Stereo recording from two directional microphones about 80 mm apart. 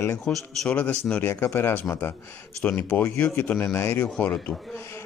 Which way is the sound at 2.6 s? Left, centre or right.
Centre.